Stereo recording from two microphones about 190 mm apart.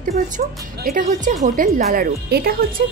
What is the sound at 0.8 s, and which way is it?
A woman's voice, 40° right (ahead or behind).